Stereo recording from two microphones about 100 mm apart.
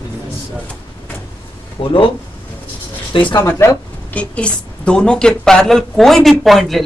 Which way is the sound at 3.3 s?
30° left (ahead or behind).